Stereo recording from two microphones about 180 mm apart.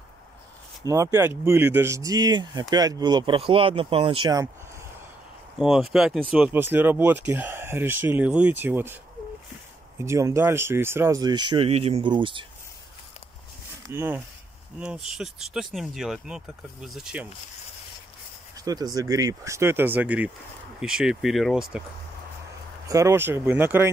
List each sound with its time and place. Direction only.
0.8 s speech: 15° right (ahead or behind)
5.6 s speech: centre (ahead or behind)
9.9 s speech: 15° right (ahead or behind)
13.8 s speech: 15° right (ahead or behind)
18.6 s speech: 20° right (ahead or behind); by 21.8 s centre (ahead or behind)
22.8 s speech: 15° right (ahead or behind)